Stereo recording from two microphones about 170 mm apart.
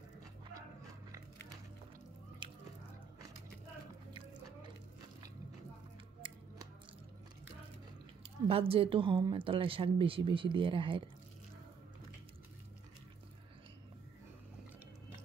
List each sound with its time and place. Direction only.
8.2 s a woman's voice: 35° right (ahead or behind)